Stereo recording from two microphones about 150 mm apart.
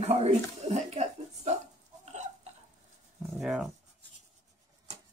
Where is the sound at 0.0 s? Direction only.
45° right (ahead or behind).